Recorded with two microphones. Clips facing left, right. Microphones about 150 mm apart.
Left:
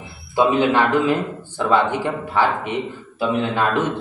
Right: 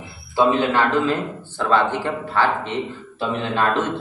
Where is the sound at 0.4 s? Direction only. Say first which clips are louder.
Left 1 dB; 15° left (ahead or behind).